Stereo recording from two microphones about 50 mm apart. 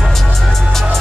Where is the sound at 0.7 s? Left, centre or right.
Centre.